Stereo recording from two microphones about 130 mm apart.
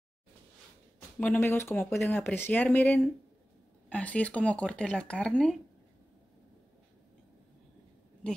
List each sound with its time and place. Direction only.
1.2 s speech: 15° left (ahead or behind)